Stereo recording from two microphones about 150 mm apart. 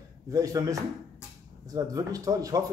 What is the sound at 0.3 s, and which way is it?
A man's voice, 25° right (ahead or behind).